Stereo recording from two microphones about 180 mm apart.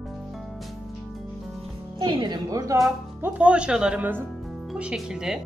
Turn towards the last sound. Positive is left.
turn(degrees=-5)  # may be behind; listen again after turning